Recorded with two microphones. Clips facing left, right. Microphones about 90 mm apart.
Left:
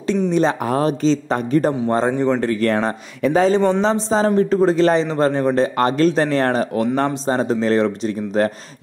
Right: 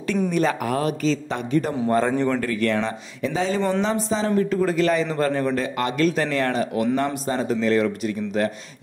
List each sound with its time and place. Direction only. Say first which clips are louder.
0.3 s a man's voice: left 5 dB; 25° left (ahead or behind)
3.2 s speech: left 8 dB; 55° left (ahead or behind)
3.8 s a man's voice: left 6 dB; 35° left (ahead or behind)